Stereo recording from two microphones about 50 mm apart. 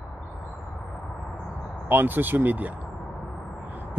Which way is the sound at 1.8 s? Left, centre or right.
Right.